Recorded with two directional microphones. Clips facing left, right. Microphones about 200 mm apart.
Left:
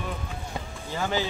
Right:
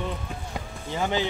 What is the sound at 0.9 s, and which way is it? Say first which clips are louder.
Speech: right 2 dB; 20° right (ahead or behind).